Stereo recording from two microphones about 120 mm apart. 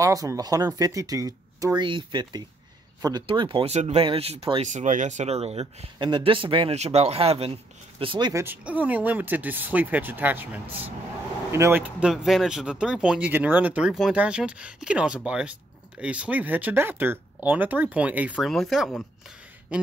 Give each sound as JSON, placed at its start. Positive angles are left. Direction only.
{"t": 0.0, "sound": "speech", "side_deg": -30}
{"t": 1.8, "sound": "speech", "side_deg": -40}
{"t": 3.7, "sound": "speech", "side_deg": -65}
{"t": 4.0, "sound": "speech", "side_deg": -55}
{"t": 4.6, "sound": "speech", "side_deg": -90}
{"t": 5.9, "sound": "speech", "side_deg": -40}
{"t": 6.8, "sound": "speech", "side_deg": -60}
{"t": 8.3, "sound": "speech", "side_deg": -25}
{"t": 8.6, "sound": "speech", "side_deg": -10}
{"t": 11.8, "sound": "speech", "side_deg": -5}
{"t": 18.4, "sound": "speech", "side_deg": 0}